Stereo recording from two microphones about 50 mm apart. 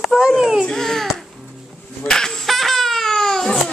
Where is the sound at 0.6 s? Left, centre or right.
Centre.